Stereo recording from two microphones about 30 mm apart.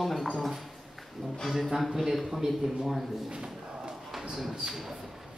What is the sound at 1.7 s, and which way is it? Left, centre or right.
Speech, centre.